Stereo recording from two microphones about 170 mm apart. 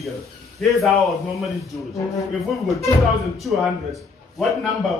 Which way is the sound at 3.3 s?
Centre (ahead or behind).